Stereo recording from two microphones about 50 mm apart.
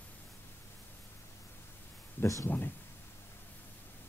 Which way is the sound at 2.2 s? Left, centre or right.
Left.